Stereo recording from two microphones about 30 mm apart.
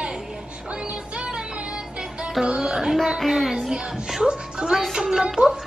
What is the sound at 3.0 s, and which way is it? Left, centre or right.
Speech, centre.